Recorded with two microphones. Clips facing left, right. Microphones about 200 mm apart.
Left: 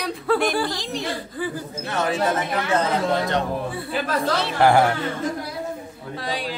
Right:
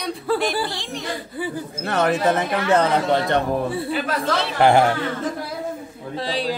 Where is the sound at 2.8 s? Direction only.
60° right (ahead or behind).